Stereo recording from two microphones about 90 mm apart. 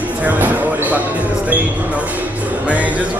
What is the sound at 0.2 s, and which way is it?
Basketball bounce, 20° right (ahead or behind).